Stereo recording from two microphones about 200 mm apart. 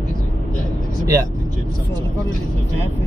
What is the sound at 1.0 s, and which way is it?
Speech, 15° right (ahead or behind).